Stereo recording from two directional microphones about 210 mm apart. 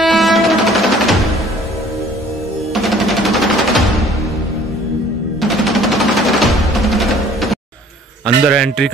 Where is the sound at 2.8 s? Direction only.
Centre (ahead or behind).